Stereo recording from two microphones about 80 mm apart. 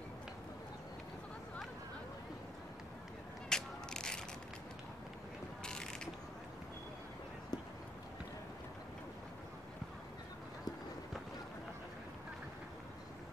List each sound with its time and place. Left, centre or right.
3.4 s a sound: centre
5.6 s mechanisms: centre
7.5 s run: left